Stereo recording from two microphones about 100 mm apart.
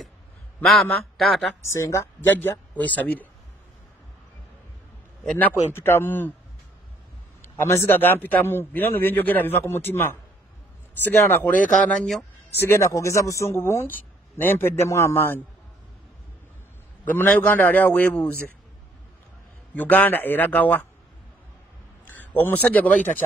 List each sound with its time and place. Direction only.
0.9 s speech: centre (ahead or behind)
1.6 s speech: 30° left (ahead or behind)
2.8 s a man's voice: 15° left (ahead or behind)
5.3 s speech: 20° left (ahead or behind)
7.6 s a man's voice: 25° left (ahead or behind)
12.5 s speech: 25° left (ahead or behind)
17.0 s a man's voice: 20° left (ahead or behind)
19.7 s a man's voice: 15° left (ahead or behind)
22.0 s a man's voice: 15° left (ahead or behind)